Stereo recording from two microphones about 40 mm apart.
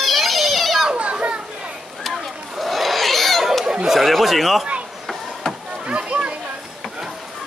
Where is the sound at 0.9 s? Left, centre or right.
Right.